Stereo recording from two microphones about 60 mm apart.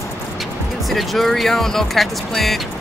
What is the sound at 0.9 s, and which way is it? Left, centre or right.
Speech, centre.